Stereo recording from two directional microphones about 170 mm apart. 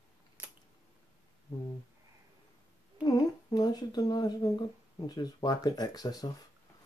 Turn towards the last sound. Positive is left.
turn(degrees=20)  # may be behind; listen again after turning